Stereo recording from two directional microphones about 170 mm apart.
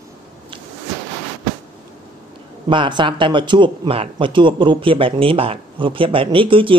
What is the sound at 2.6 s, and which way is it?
Speech, 30° right (ahead or behind).